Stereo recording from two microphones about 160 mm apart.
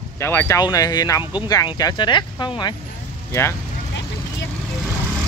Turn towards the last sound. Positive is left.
turn(degrees=20)  # may be behind; listen again after turning